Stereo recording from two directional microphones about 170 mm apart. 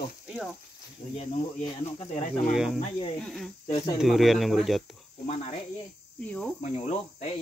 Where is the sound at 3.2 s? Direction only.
Centre (ahead or behind).